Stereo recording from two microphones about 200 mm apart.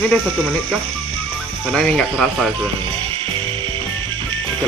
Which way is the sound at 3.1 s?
25° right (ahead or behind).